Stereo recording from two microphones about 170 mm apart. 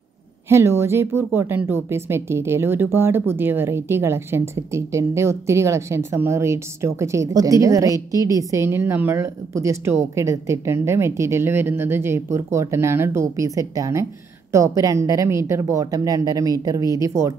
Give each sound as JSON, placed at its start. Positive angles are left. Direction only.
{"t": 0.5, "sound": "a woman's voice", "side_deg": -15}